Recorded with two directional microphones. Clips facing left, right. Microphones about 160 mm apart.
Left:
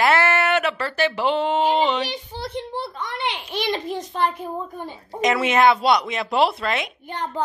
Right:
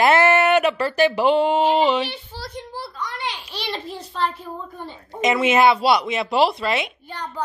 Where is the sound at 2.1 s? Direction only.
20° left (ahead or behind).